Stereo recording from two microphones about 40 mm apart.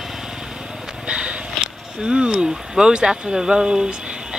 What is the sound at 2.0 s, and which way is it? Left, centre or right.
Speech, right.